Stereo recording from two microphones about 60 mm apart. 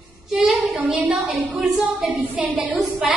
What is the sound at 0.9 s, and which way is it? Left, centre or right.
Speech, right.